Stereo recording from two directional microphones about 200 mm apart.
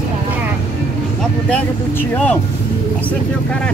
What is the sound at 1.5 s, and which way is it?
Speech, 5° left (ahead or behind).